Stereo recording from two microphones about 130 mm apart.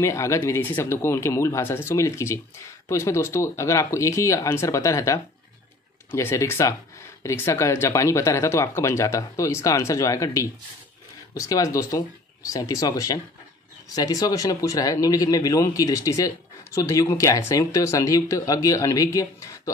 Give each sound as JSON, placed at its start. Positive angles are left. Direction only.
{"t": 0.0, "sound": "speech", "side_deg": 20}